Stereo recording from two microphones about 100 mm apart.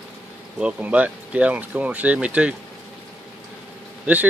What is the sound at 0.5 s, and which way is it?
Speech, 10° right (ahead or behind).